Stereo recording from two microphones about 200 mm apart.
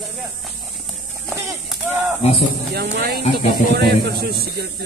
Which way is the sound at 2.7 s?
55° right (ahead or behind).